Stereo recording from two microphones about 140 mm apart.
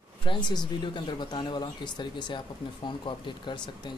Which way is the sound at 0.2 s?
35° left (ahead or behind).